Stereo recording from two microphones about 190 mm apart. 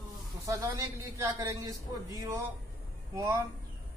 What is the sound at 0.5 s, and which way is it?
Speech, 15° right (ahead or behind).